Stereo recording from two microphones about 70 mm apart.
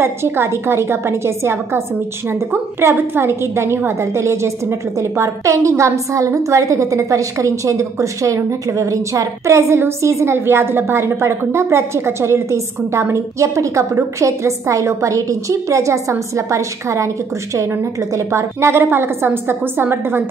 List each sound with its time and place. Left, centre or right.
0.0 s a woman's voice: right
18.1 s a woman's voice: right